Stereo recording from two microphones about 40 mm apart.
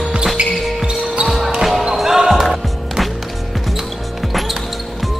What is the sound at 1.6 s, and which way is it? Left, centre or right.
Basketball bounce, centre.